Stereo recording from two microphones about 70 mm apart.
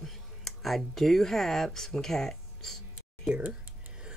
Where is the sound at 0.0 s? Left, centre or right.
Centre.